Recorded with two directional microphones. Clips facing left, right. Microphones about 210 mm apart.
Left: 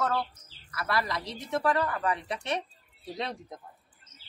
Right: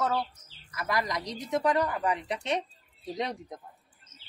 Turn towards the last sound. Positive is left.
turn(degrees=-15)  # may be behind; listen again after turning